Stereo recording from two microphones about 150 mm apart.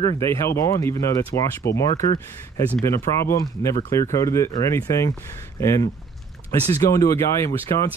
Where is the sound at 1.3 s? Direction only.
90° left.